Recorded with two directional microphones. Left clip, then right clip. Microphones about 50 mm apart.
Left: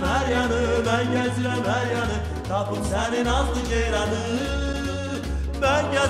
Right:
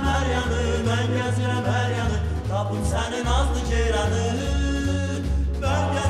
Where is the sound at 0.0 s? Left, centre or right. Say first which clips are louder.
Left 1 dB; right.